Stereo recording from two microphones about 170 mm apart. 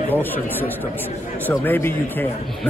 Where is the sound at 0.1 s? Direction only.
10° left (ahead or behind).